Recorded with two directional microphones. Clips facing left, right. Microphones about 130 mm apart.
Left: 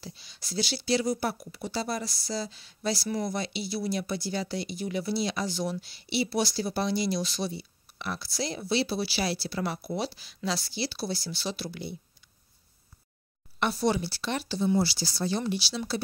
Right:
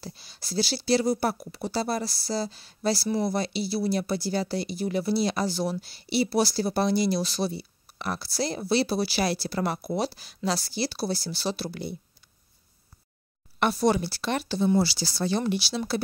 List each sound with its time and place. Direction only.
0.0 s speech: 40° right (ahead or behind)
13.6 s speech: 50° right (ahead or behind)
14.8 s speech: 85° right; by 16.0 s 55° right (ahead or behind)